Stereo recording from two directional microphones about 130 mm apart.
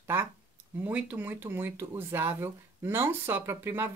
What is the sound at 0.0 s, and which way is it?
Speech, 20° right (ahead or behind).